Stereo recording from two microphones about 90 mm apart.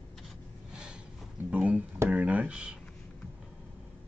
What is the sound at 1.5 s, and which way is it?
Guitar, 15° right (ahead or behind).